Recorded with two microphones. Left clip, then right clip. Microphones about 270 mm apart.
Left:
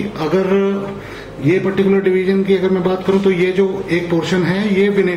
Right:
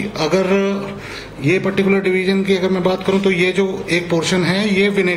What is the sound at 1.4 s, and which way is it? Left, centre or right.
A man's voice, right.